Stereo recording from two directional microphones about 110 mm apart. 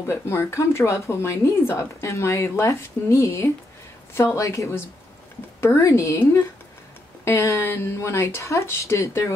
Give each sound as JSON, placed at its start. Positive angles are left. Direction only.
{"t": 0.0, "sound": "speech", "side_deg": 25}